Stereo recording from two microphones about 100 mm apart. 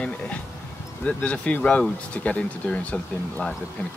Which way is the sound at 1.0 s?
10° left (ahead or behind).